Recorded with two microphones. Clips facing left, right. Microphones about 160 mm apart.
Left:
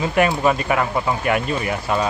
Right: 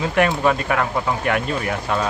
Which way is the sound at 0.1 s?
5° left (ahead or behind).